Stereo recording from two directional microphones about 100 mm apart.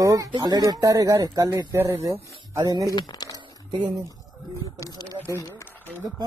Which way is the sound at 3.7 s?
45° right (ahead or behind).